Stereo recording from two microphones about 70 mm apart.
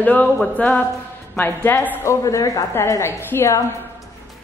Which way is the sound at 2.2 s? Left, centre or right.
Left.